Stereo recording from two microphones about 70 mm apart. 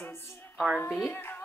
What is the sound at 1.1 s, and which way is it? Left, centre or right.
Music, left.